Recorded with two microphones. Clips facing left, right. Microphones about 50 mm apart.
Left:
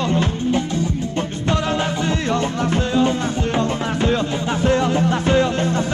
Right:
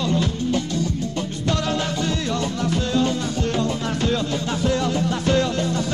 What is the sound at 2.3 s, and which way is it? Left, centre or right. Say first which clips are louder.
Music: left 4 dB; left.